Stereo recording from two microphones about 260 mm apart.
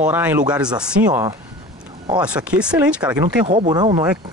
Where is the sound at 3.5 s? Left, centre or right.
Centre.